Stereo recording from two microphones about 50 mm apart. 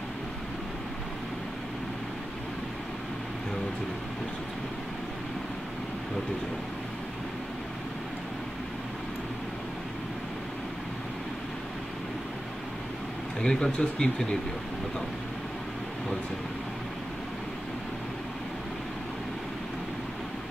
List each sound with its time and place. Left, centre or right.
13.4 s speech: centre